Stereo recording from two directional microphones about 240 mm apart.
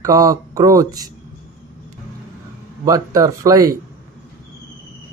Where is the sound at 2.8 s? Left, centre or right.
Centre.